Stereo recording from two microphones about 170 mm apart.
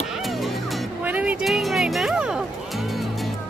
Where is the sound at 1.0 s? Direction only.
10° right (ahead or behind).